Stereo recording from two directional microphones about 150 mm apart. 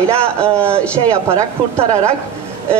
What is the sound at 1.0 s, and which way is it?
Speech, 20° right (ahead or behind).